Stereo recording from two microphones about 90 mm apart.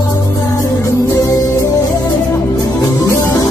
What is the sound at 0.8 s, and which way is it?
Music, 35° left (ahead or behind).